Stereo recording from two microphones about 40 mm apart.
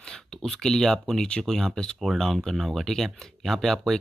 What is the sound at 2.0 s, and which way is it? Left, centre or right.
Speech, centre.